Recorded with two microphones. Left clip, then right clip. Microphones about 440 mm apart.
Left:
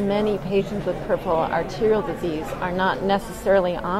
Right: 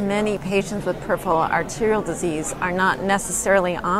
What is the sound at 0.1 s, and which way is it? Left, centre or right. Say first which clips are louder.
Speech: right 1 dB; right.